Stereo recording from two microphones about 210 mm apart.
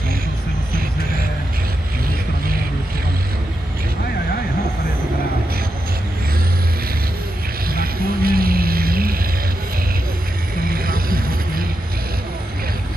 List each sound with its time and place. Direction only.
7.7 s vehicle: 45° right (ahead or behind)
10.7 s vehicle: 45° right (ahead or behind)